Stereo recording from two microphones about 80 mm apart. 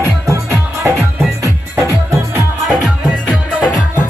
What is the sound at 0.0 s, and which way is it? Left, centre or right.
Music, right.